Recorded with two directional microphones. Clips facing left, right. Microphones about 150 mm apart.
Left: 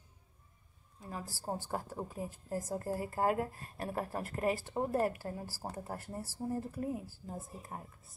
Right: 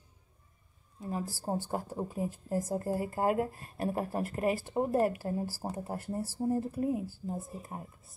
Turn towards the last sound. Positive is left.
turn(degrees=-15)  # may be behind; listen again after turning